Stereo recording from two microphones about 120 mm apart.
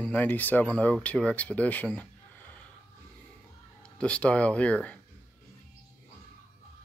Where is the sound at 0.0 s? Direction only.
15° left (ahead or behind).